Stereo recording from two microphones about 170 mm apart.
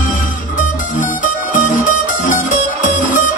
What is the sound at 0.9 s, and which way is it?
Music, 50° left (ahead or behind).